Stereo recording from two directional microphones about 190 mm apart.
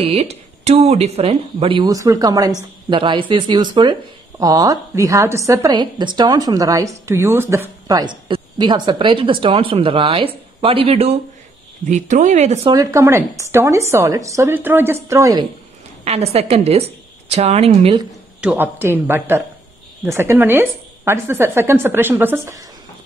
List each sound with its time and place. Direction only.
0.0 s a woman's voice: 30° right (ahead or behind)
12.7 s speech: 15° right (ahead or behind)
16.0 s a woman's voice: 35° right (ahead or behind)
18.4 s speech: 10° right (ahead or behind)